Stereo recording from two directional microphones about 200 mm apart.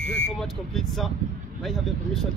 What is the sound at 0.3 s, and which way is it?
Speech, centre (ahead or behind).